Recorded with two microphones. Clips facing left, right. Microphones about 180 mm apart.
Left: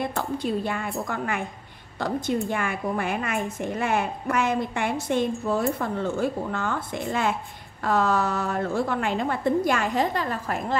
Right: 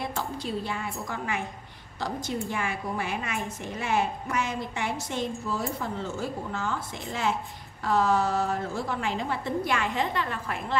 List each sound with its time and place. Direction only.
0.0 s a woman's voice: 55° left (ahead or behind)